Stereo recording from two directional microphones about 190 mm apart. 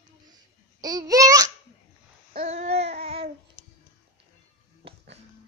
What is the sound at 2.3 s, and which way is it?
Babbling, 35° right (ahead or behind).